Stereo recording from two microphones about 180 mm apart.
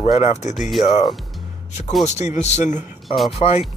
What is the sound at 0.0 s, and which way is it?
Speech, 40° left (ahead or behind).